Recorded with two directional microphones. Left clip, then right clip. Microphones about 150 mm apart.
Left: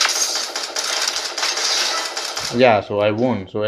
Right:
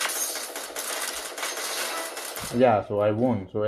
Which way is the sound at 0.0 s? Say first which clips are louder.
Left 11 dB; 45° left (ahead or behind).